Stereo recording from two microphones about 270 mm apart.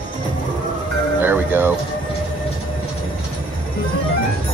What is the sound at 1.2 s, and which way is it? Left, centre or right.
Music, centre.